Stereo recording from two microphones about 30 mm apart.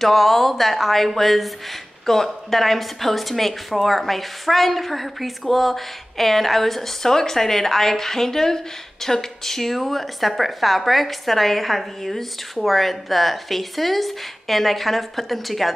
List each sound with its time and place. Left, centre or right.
0.0 s a woman's voice: centre